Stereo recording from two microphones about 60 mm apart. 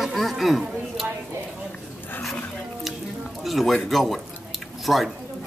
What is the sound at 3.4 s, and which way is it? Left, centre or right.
Speech, centre.